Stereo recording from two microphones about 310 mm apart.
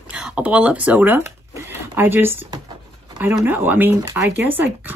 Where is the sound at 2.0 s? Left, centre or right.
Centre.